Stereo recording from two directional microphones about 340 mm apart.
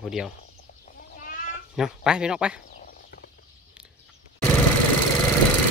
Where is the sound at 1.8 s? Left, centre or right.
Centre.